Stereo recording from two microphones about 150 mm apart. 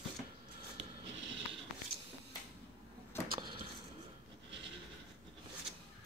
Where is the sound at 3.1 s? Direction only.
15° left (ahead or behind).